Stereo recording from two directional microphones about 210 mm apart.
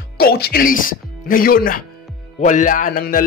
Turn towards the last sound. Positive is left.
turn(degrees=40)  # may be behind; listen again after turning